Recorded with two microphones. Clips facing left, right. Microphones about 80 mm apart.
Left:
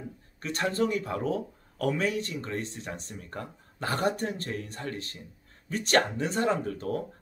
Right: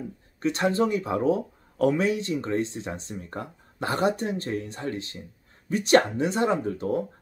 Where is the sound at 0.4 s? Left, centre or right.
Right.